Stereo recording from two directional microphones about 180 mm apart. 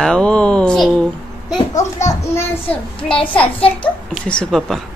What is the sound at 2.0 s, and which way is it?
Speech, 40° left (ahead or behind).